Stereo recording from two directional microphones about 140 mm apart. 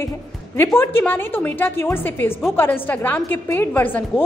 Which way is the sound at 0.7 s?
15° left (ahead or behind).